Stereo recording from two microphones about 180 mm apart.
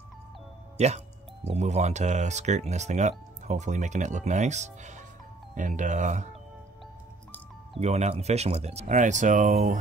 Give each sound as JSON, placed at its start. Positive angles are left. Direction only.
{"t": 0.7, "sound": "speech", "side_deg": -40}
{"t": 7.8, "sound": "speech", "side_deg": -35}